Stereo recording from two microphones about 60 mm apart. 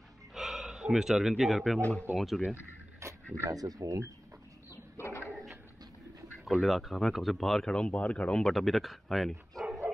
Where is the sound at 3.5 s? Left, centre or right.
Right.